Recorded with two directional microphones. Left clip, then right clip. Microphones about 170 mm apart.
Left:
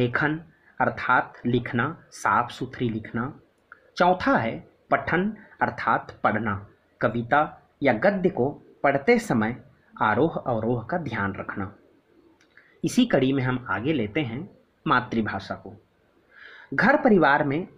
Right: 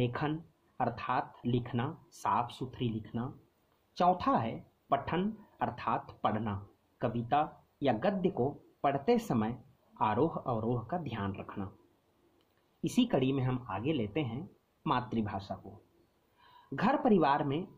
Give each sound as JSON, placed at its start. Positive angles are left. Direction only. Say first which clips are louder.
{"t": 0.0, "sound": "speech", "louder": "left 10 dB", "side_deg": -25}
{"t": 5.0, "sound": "speech", "louder": "left 10 dB", "side_deg": -15}
{"t": 12.8, "sound": "speech", "louder": "left 9 dB", "side_deg": -25}
{"t": 16.7, "sound": "speech", "louder": "left 10 dB", "side_deg": -15}